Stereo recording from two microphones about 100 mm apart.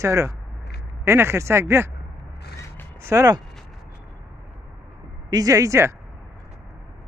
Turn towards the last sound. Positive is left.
turn(degrees=-30)  # may be behind; listen again after turning